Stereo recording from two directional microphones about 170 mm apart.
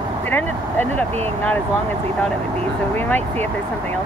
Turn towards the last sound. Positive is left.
turn(degrees=10)  # may be behind; listen again after turning